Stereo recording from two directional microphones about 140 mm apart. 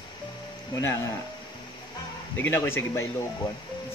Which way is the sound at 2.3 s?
15° left (ahead or behind).